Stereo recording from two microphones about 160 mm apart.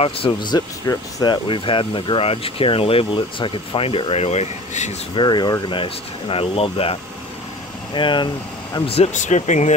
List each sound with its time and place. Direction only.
0.0 s speech: 30° left (ahead or behind)
5.1 s speech: 30° left (ahead or behind); by 9.8 s 45° left (ahead or behind)